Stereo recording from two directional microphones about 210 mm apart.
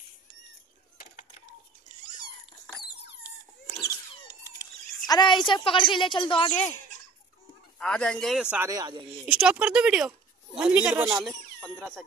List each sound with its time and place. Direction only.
2.9 s a sound: 55° left (ahead or behind)
4.5 s a sound: 15° left (ahead or behind)
5.5 s a woman's voice: 25° left (ahead or behind)
6.5 s speech: 10° left (ahead or behind)
7.8 s a woman's voice: 5° left (ahead or behind); by 9.0 s 20° right (ahead or behind)
9.2 s a woman's voice: 5° right (ahead or behind)